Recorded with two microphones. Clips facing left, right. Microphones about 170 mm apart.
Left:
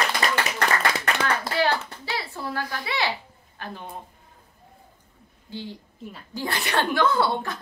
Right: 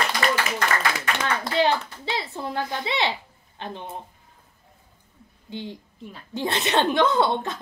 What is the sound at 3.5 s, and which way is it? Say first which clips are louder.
Speech: right 2 dB; 20° right (ahead or behind).